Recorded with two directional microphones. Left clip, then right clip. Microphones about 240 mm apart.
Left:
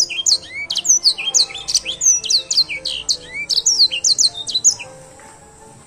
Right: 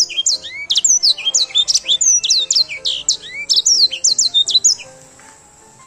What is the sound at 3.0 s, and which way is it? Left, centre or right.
Chirp, centre.